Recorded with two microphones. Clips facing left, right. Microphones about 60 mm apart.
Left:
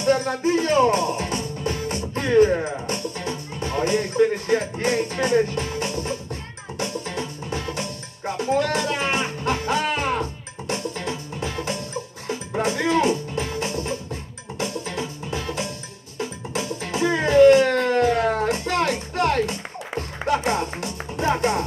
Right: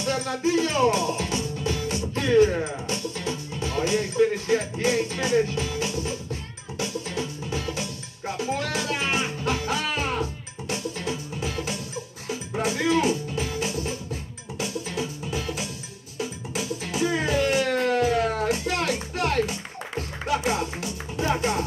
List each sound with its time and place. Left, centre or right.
0.0 s music: left
2.9 s speech: left
6.8 s music: left
10.7 s music: left